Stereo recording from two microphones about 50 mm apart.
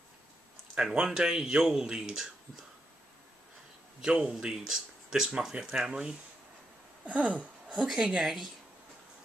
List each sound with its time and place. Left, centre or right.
0.7 s speech: centre
4.0 s speech: centre
7.1 s a sound: right
7.8 s a woman's voice: centre